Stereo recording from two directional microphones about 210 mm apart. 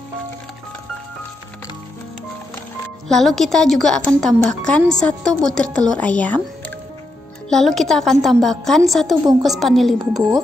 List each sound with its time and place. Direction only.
3.1 s speech: centre (ahead or behind)
7.4 s speech: centre (ahead or behind)
9.1 s a woman's voice: 20° right (ahead or behind)
9.4 s speech: centre (ahead or behind)